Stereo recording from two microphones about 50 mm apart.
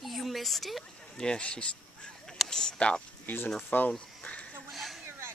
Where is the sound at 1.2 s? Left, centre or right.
Centre.